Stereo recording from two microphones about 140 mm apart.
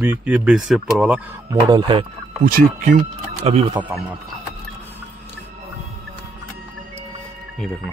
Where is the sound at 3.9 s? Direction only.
10° right (ahead or behind).